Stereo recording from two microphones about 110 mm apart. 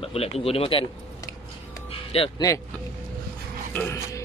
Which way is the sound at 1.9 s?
60° left (ahead or behind).